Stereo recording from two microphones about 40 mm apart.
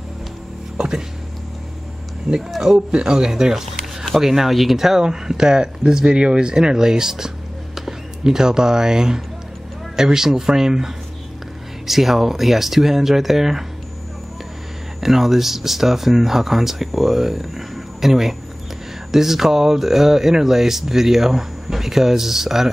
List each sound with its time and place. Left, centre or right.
0.7 s a sound: centre
2.3 s speech: centre
11.9 s speech: centre
15.0 s speech: centre